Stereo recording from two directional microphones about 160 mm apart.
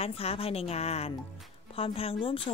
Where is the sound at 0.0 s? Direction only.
40° left (ahead or behind).